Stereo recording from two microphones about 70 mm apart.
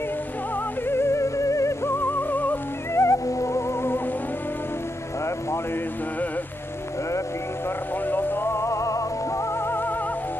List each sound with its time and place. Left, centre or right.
0.8 s music: left
2.0 s music: left
2.9 s music: left
8.1 s music: left